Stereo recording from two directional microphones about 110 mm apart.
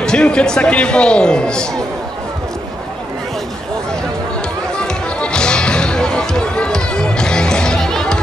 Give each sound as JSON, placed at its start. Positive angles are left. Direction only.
{"t": 0.0, "sound": "speech", "side_deg": 5}
{"t": 4.8, "sound": "music", "side_deg": 5}